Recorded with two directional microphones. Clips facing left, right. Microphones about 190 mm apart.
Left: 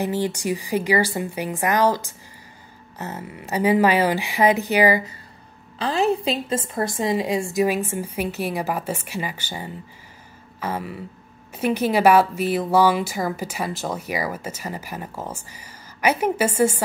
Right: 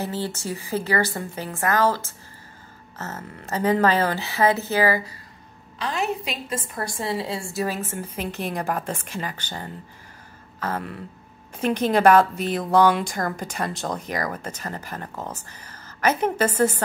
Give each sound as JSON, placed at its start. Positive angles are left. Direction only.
{"t": 0.0, "sound": "a woman's voice", "side_deg": 15}
{"t": 5.8, "sound": "a woman's voice", "side_deg": 30}